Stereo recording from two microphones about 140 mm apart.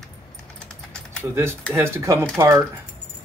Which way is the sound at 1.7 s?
20° right (ahead or behind).